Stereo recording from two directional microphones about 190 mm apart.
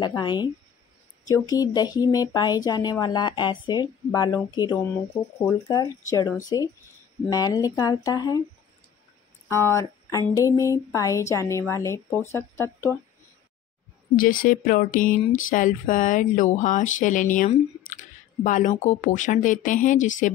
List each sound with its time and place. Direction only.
0.0 s speech: 25° left (ahead or behind)
9.5 s speech: 15° left (ahead or behind)
14.1 s speech: 45° left (ahead or behind)